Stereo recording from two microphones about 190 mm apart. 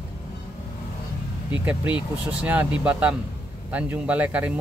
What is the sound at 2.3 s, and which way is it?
Speech, 5° right (ahead or behind).